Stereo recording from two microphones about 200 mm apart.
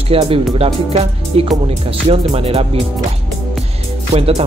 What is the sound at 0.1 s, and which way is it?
Speech, 30° right (ahead or behind).